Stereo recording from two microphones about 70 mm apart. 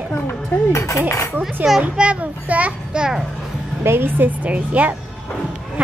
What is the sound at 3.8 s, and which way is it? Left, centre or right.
Speech, right.